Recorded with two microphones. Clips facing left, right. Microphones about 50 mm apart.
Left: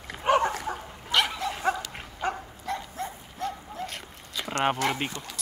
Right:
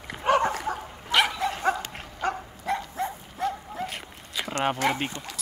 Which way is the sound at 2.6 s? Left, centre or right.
Centre.